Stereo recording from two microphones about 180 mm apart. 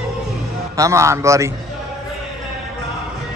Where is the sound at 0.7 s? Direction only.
15° right (ahead or behind).